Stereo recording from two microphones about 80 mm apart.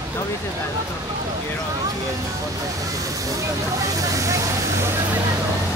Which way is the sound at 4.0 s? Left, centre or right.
Right.